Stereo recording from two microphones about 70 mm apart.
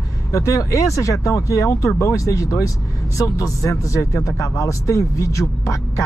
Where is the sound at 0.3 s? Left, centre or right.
Left.